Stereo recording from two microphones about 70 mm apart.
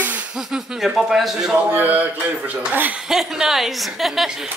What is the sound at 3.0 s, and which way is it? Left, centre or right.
Speech, centre.